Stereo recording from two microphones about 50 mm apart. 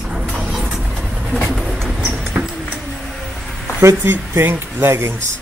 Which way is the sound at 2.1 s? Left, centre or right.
Right.